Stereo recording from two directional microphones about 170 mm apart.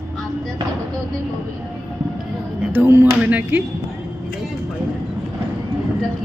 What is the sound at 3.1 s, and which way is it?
Speech, 5° right (ahead or behind).